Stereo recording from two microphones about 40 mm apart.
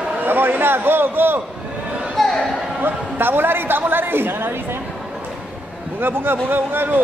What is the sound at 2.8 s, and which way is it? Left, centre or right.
A woman's voice, right.